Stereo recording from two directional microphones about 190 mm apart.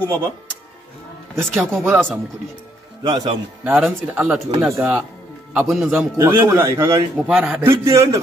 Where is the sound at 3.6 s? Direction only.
10° right (ahead or behind).